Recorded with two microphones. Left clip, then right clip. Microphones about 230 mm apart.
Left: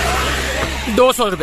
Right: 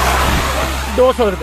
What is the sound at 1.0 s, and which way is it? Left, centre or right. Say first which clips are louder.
Speech: right 2 dB; left.